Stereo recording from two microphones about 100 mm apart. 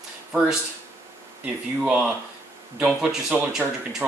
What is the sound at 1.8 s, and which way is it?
Speech, 10° right (ahead or behind).